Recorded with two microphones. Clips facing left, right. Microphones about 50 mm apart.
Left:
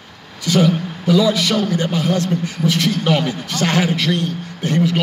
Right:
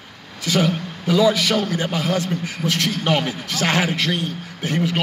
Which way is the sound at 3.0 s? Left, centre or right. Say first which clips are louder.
Even; right.